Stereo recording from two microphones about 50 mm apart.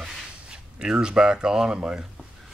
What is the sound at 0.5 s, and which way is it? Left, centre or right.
Speech, centre.